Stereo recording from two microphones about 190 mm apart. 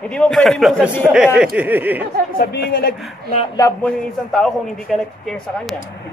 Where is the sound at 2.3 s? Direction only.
55° left (ahead or behind).